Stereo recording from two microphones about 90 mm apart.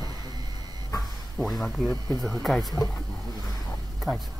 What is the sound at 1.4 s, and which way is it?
Speech, centre (ahead or behind).